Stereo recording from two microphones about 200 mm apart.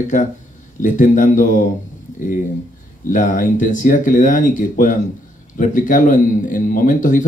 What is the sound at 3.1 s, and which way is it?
Speech, 40° left (ahead or behind).